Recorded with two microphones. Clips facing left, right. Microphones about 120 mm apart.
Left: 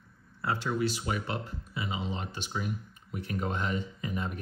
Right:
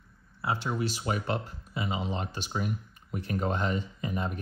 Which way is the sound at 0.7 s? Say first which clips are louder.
Even; 35° right (ahead or behind).